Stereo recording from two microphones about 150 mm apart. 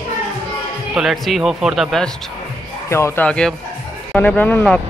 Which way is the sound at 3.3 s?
5° left (ahead or behind).